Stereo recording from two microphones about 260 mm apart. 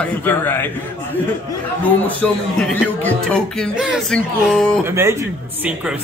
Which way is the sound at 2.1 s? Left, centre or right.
Centre.